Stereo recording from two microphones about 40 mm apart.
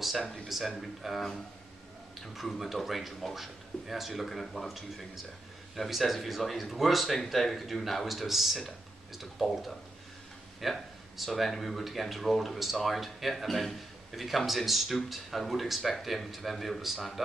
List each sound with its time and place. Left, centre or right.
0.7 s speech: centre